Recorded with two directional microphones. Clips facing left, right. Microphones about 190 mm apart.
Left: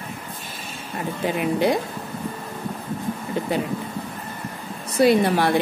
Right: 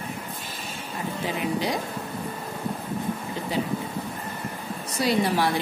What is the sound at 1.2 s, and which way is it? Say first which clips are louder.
Speech: left 6 dB; 60° left (ahead or behind).